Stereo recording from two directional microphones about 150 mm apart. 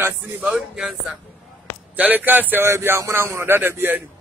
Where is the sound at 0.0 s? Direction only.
10° right (ahead or behind).